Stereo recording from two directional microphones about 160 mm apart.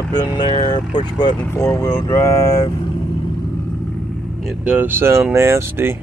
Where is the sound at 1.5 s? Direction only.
15° left (ahead or behind).